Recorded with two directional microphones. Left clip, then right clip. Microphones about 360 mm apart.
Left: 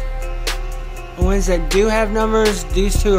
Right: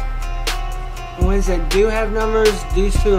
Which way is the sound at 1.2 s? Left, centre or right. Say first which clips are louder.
Left 2 dB; left.